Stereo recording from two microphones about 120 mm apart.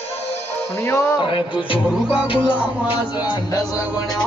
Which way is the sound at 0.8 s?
20° left (ahead or behind).